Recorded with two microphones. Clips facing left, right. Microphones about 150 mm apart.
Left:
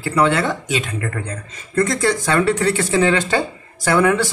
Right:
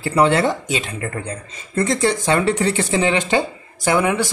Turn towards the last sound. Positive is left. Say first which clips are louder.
# left 2 dB
turn(degrees=-15)  # may be behind; listen again after turning